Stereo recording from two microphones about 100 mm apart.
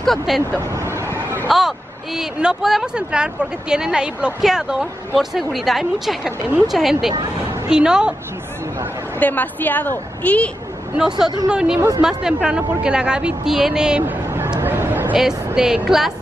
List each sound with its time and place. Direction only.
0.0 s speech: centre (ahead or behind)
1.5 s speech: centre (ahead or behind)
9.2 s a woman's voice: 15° left (ahead or behind)
11.0 s speech: 5° right (ahead or behind)
14.0 s a sound: 25° right (ahead or behind)
15.1 s speech: 5° right (ahead or behind)